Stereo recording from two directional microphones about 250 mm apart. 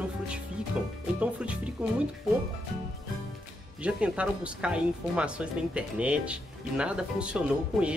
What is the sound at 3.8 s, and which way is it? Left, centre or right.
Speech, centre.